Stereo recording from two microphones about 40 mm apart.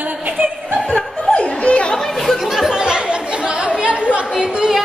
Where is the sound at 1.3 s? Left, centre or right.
Left.